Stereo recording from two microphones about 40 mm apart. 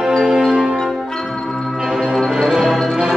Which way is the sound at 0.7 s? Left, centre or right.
Centre.